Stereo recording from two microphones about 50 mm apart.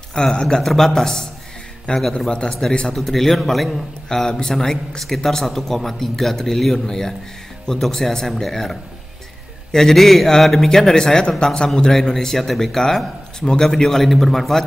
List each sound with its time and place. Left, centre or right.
0.1 s a man's voice: centre
2.9 s a man's voice: centre